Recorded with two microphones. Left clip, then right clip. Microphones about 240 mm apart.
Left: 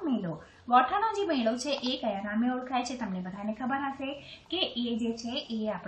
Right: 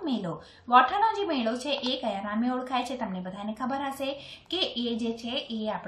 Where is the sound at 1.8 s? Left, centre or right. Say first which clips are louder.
Right 2 dB; centre.